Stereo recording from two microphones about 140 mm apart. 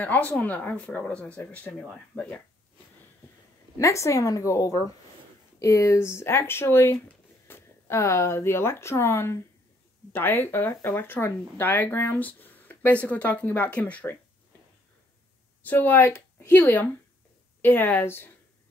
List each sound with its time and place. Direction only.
0.0 s speech: 10° left (ahead or behind)
3.7 s a woman's voice: 20° left (ahead or behind)
15.6 s a woman's voice: 15° left (ahead or behind)